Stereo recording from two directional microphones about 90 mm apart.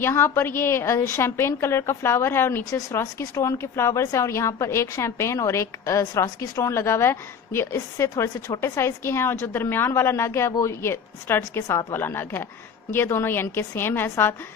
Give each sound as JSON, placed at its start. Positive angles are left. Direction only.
{"t": 0.0, "sound": "a woman's voice", "side_deg": 25}
{"t": 7.7, "sound": "speech", "side_deg": 35}
{"t": 11.6, "sound": "a woman's voice", "side_deg": 40}
{"t": 11.9, "sound": "speech", "side_deg": 25}